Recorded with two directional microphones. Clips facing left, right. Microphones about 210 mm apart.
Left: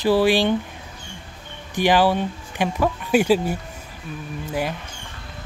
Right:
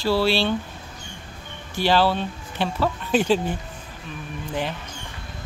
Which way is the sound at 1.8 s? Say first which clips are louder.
Left 2 dB; 15° left (ahead or behind).